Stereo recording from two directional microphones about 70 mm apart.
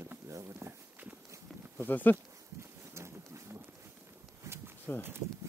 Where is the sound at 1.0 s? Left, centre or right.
Right.